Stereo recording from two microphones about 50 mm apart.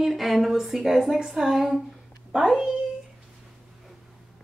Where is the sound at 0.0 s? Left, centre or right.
Centre.